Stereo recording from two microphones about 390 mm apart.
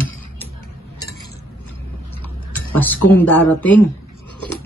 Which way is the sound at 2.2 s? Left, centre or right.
Centre.